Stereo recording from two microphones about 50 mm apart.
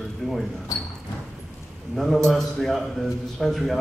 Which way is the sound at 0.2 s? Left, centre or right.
Centre.